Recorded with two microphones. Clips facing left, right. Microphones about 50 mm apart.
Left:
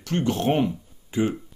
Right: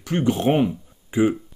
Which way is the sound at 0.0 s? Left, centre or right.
Centre.